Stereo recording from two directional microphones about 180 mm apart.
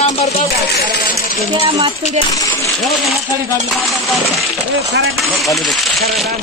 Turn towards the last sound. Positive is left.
turn(degrees=0)  # may be behind; listen again after turning